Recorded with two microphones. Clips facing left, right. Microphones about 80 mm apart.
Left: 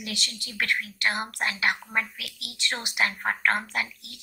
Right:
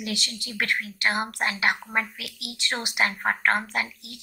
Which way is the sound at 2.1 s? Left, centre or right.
Centre.